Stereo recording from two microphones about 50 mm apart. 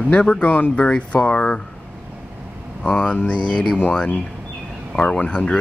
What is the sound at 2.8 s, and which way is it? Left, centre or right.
Speech, centre.